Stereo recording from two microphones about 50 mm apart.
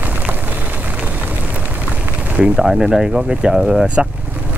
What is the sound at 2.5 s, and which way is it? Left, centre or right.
Speech, centre.